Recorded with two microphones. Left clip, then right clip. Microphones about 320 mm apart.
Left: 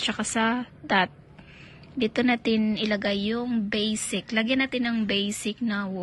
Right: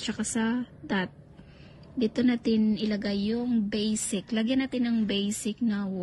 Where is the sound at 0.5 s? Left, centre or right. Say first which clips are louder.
Left 6 dB; right.